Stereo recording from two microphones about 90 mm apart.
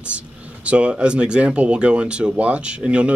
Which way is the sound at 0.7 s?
15° right (ahead or behind).